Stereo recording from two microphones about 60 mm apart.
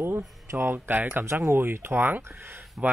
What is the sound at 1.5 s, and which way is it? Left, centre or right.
Speech, right.